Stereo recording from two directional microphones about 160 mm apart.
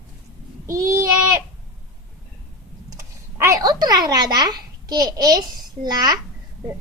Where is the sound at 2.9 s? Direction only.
20° right (ahead or behind).